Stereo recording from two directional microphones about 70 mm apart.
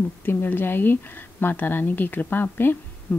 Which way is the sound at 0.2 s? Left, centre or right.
Left.